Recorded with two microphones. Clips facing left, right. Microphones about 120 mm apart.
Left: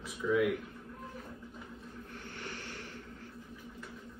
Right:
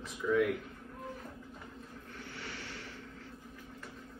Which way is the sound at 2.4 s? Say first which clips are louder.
Left 2 dB; 45° left (ahead or behind).